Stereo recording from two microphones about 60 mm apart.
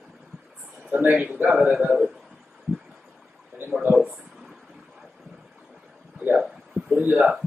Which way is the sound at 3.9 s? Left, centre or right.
Right.